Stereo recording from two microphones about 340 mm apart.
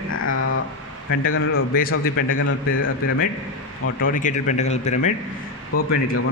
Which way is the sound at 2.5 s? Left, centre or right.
Left.